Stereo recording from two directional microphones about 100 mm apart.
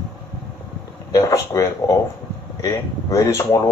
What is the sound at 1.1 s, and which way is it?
Speech, 35° left (ahead or behind).